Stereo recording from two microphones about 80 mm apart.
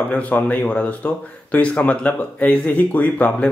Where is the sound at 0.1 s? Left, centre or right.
Centre.